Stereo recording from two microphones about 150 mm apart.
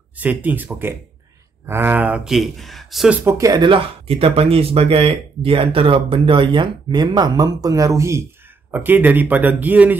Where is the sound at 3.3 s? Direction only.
20° right (ahead or behind).